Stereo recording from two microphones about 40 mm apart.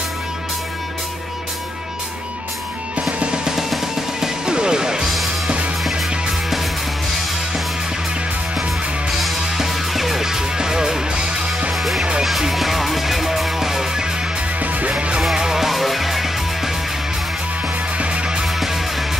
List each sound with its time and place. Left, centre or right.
3.1 s music: right
4.5 s music: centre
5.0 s music: centre
9.2 s music: centre
14.6 s music: right
15.3 s music: centre
17.9 s music: right